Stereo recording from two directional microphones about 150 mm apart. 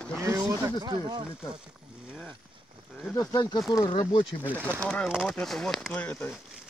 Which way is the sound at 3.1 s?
25° left (ahead or behind).